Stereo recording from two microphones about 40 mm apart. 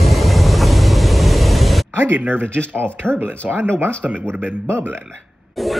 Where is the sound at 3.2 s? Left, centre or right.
Right.